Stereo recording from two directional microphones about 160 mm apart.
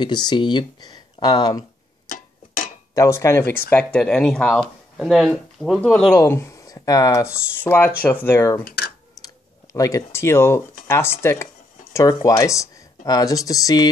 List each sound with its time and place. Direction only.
0.0 s speech: 25° left (ahead or behind)
2.9 s speech: 20° left (ahead or behind)
3.7 s speech: 5° left (ahead or behind)
6.1 s speech: 15° left (ahead or behind)
8.6 s typing: 65° left (ahead or behind)
9.2 s a sound: 20° left (ahead or behind)
10.9 s speech: 15° left (ahead or behind)